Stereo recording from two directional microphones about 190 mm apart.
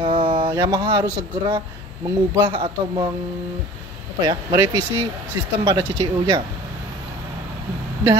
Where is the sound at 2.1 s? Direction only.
20° right (ahead or behind).